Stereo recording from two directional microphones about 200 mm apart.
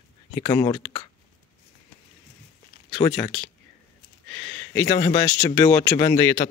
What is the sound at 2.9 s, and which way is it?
Speech, 25° left (ahead or behind).